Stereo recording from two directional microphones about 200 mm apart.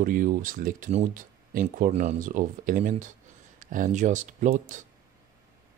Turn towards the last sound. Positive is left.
turn(degrees=-40)  # may be behind; listen again after turning